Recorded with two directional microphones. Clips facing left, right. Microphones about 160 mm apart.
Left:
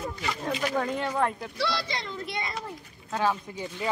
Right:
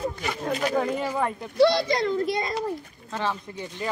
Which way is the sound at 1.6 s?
50° right (ahead or behind).